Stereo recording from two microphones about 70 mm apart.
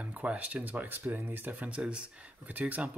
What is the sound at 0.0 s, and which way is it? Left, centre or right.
Speech, centre.